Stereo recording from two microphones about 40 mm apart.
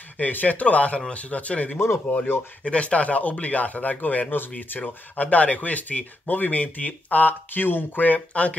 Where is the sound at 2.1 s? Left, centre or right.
Left.